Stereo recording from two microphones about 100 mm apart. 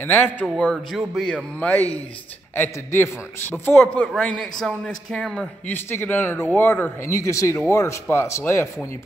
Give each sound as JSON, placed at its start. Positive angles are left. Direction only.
{"t": 0.0, "sound": "speech", "side_deg": 20}
{"t": 0.9, "sound": "a man's voice", "side_deg": 0}
{"t": 1.3, "sound": "speech", "side_deg": 15}
{"t": 4.1, "sound": "speech", "side_deg": 5}
{"t": 5.7, "sound": "speech", "side_deg": 20}